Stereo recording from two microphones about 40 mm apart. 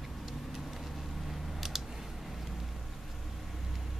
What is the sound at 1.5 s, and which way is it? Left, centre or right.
Typing, centre.